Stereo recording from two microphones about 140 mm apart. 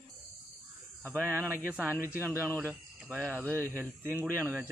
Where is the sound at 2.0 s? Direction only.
15° right (ahead or behind).